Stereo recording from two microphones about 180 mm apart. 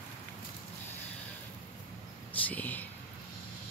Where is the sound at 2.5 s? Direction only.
10° left (ahead or behind).